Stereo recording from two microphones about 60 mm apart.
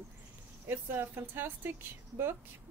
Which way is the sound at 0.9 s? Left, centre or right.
Right.